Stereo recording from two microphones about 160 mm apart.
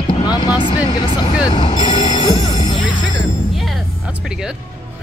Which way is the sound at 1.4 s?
30° left (ahead or behind).